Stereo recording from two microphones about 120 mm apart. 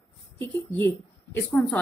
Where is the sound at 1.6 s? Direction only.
Centre (ahead or behind).